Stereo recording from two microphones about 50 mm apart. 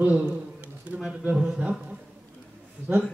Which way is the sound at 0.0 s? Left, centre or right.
Right.